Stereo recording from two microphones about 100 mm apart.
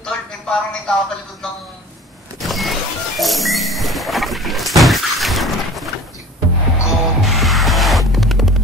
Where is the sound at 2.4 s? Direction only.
Centre (ahead or behind).